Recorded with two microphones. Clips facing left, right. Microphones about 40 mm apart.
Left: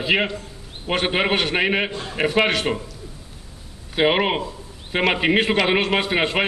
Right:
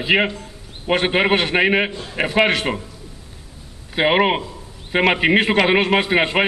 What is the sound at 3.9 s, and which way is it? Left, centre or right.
A man's voice, centre.